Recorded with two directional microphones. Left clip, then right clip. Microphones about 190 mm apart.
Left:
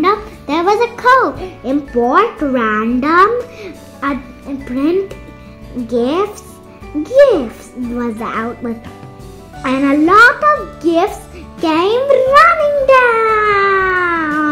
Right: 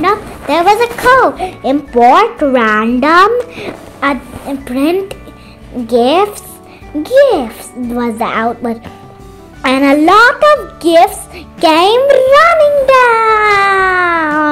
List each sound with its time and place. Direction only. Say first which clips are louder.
0.0 s a child's voice: right 2 dB; 40° right (ahead or behind)